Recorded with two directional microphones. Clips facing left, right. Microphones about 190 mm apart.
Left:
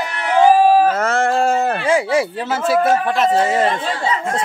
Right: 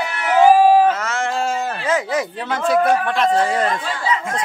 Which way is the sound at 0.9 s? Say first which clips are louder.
Left 6 dB; 55° left (ahead or behind).